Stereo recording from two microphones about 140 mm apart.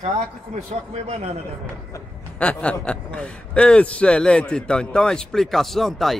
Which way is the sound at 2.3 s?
10° left (ahead or behind).